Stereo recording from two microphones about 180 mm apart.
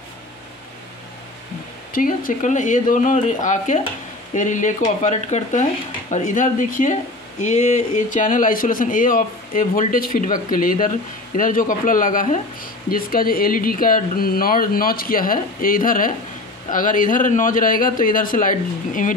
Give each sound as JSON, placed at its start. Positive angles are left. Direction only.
{"t": 1.9, "sound": "speech", "side_deg": 50}